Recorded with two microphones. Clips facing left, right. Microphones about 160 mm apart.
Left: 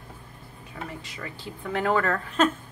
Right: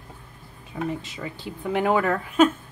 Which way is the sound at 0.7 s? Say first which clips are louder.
Right 9 dB; 20° right (ahead or behind).